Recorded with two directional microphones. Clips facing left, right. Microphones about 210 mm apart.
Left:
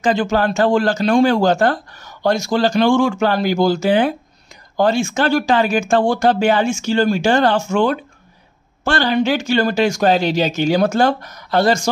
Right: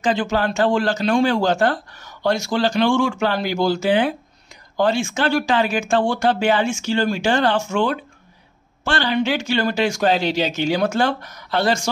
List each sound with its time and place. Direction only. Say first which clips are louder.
0.0 s speech: left 3 dB; 45° left (ahead or behind)